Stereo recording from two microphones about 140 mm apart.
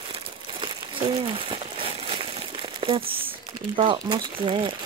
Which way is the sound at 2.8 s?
40° right (ahead or behind).